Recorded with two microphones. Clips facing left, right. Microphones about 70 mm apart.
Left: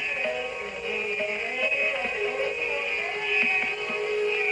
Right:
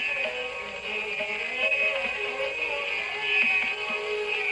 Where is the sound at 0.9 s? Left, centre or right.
Centre.